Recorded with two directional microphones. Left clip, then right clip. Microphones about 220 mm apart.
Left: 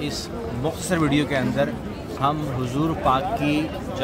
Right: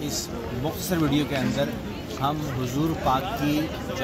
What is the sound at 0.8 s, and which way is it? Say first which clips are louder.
Speech: left 3 dB; 20° left (ahead or behind).